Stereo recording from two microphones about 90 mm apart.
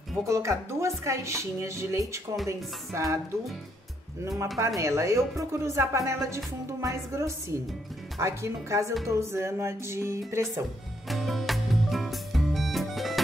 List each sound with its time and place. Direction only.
0.3 s speech: 35° right (ahead or behind)
4.6 s speech: 35° right (ahead or behind)
11.1 s music: centre (ahead or behind)